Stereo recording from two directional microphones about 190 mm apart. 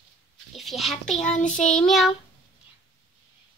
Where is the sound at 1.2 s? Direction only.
40° left (ahead or behind).